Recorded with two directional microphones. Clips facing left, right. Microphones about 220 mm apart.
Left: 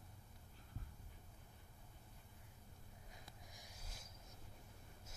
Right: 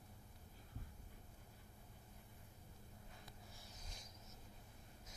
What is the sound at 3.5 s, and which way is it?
Snort, 10° left (ahead or behind).